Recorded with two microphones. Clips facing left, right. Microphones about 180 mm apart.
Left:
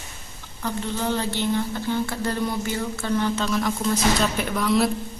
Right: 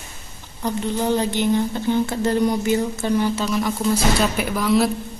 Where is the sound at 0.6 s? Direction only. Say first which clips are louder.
Right 4 dB; 15° right (ahead or behind).